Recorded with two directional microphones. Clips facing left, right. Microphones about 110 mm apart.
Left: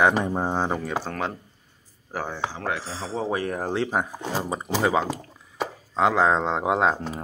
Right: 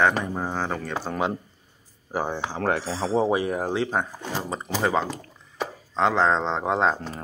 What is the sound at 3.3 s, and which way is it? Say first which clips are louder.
Speech: right 2 dB; 10° right (ahead or behind).